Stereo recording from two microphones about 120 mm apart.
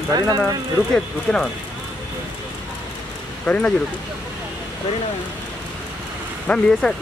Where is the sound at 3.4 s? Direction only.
10° left (ahead or behind).